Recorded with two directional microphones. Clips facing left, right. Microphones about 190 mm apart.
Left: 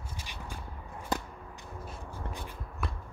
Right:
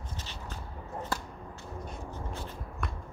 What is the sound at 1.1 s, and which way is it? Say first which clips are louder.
Whip: left 4 dB; 15° left (ahead or behind).